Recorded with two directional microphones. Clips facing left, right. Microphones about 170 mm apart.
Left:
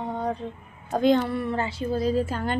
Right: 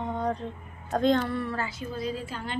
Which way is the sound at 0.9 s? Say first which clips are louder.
Left 3 dB; 10° left (ahead or behind).